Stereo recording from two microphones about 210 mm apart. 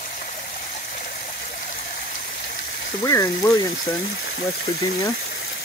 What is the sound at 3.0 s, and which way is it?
Speech, 15° left (ahead or behind).